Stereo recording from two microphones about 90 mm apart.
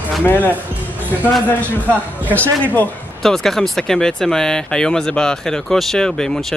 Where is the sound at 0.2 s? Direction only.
20° left (ahead or behind).